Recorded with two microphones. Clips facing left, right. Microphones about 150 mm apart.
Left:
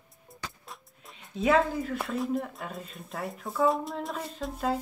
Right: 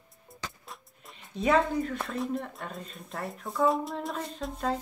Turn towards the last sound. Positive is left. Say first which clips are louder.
# left 1 dB
turn(degrees=5)  # may be behind; listen again after turning